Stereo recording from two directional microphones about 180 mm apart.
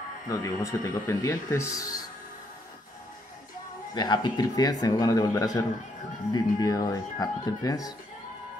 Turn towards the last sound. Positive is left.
turn(degrees=20)  # may be behind; listen again after turning